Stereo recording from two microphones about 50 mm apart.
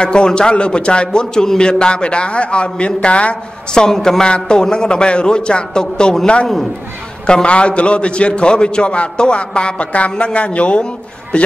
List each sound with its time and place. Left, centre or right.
0.0 s a man's voice: centre
3.8 s a man's voice: centre